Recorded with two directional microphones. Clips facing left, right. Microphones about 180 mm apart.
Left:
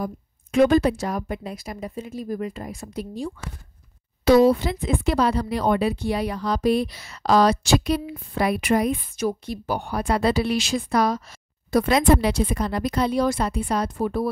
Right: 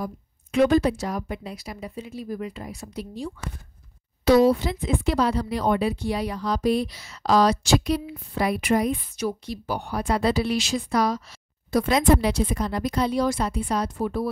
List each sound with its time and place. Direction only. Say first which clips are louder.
0.0 s a woman's voice: left 3 dB; 50° left (ahead or behind); by 8.9 s 70° left (ahead or behind)
9.1 s speech: left 3 dB; 50° left (ahead or behind)